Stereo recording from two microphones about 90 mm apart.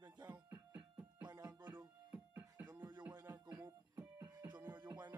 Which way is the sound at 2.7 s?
50° right (ahead or behind).